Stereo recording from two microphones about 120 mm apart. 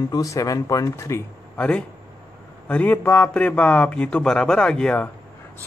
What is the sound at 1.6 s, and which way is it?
A man's voice, 10° left (ahead or behind).